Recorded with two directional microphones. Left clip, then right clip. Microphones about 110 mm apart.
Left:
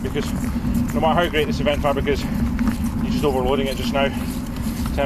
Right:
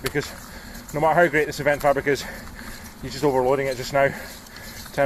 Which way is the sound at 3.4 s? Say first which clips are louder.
Even; 25° right (ahead or behind).